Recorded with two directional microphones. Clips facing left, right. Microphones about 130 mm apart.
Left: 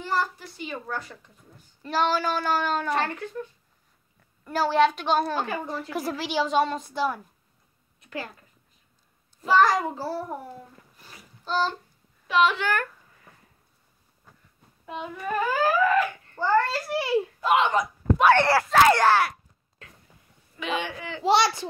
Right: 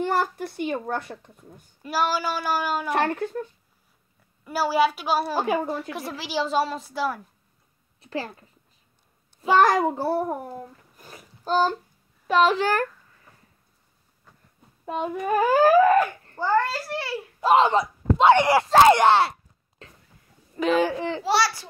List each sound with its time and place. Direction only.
0.0 s a child's voice: 55° right (ahead or behind)
1.8 s speech: 10° right (ahead or behind)
2.9 s a child's voice: 55° right (ahead or behind)
4.5 s a woman's voice: 10° right (ahead or behind)
8.0 s speech: 35° right (ahead or behind)
9.6 s a child's voice: 50° right (ahead or behind)
11.0 s a sound: 45° right (ahead or behind)
12.3 s speech: 40° right (ahead or behind)
14.9 s a child's voice: 45° right (ahead or behind)
16.3 s speech: 10° right (ahead or behind)
16.9 s a child's voice: 15° left (ahead or behind)
17.4 s a child's voice: 35° right (ahead or behind)
20.5 s speech: 40° right (ahead or behind)
21.2 s a child's voice: 20° left (ahead or behind)